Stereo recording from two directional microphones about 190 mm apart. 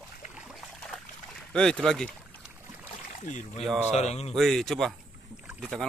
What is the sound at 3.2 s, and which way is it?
Speech, 35° left (ahead or behind).